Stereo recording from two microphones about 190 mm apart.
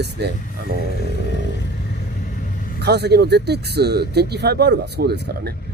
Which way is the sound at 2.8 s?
60° right (ahead or behind).